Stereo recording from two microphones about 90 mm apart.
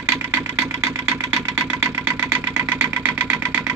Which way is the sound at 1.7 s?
15° right (ahead or behind).